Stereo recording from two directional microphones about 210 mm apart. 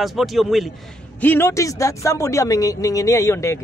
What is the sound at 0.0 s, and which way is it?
Speech, centre (ahead or behind).